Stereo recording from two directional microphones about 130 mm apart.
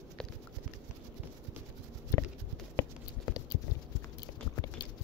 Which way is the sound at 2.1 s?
20° left (ahead or behind).